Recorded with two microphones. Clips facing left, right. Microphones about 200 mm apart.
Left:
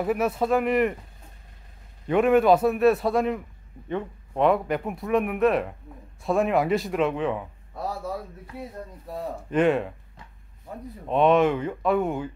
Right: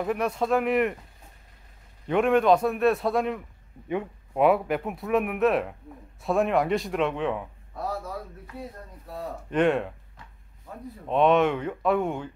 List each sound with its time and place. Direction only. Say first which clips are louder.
0.0 s speech: left 2 dB; 5° left (ahead or behind)
2.0 s speech: left 2 dB; centre (ahead or behind)
3.9 s speech: even; 10° right (ahead or behind)
9.5 s speech: left 1 dB; centre (ahead or behind)
11.1 s speech: left 1 dB; centre (ahead or behind)